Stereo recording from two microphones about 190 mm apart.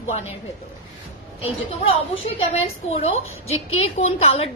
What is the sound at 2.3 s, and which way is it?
A woman's voice, 35° left (ahead or behind).